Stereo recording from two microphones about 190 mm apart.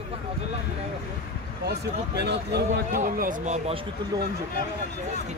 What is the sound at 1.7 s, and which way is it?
Speech, 60° right (ahead or behind).